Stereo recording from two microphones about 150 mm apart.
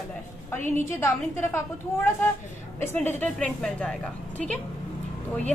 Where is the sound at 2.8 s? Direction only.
15° left (ahead or behind).